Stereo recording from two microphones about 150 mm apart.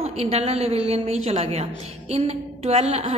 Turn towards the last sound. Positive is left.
turn(degrees=-45)  # may be behind; listen again after turning